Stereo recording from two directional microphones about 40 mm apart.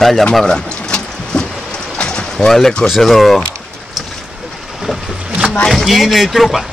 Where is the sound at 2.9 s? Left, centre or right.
Centre.